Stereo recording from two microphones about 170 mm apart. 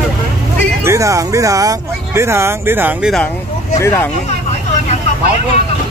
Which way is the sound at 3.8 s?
15° left (ahead or behind).